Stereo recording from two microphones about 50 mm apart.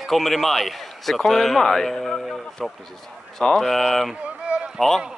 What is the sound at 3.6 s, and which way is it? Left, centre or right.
Speech, centre.